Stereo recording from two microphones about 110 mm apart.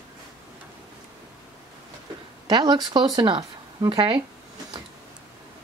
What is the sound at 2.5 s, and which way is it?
Speech, 40° right (ahead or behind).